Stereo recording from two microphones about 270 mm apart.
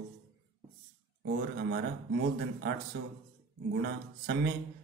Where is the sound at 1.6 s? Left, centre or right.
Right.